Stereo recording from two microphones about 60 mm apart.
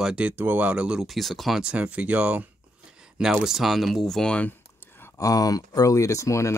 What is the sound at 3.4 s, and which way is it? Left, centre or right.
Speech, centre.